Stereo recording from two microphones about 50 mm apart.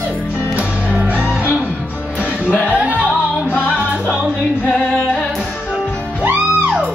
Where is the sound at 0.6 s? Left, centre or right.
Right.